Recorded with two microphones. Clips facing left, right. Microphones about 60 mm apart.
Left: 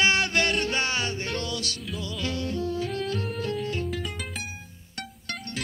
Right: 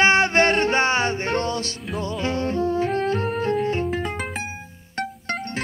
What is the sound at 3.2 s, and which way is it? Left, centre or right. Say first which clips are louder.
Music: right 8 dB; right.